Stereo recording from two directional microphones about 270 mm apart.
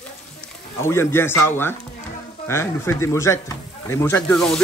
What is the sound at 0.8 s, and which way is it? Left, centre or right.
Speech, centre.